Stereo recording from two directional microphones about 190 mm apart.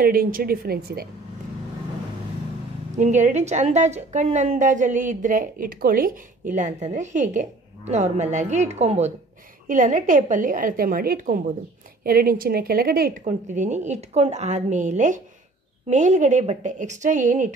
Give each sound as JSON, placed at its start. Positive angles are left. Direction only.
{"t": 0.0, "sound": "a woman's voice", "side_deg": -50}
{"t": 3.0, "sound": "a woman's voice", "side_deg": -40}
{"t": 13.2, "sound": "a woman's voice", "side_deg": -35}